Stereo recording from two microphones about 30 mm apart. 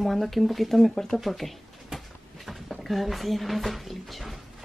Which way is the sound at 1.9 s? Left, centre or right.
Centre.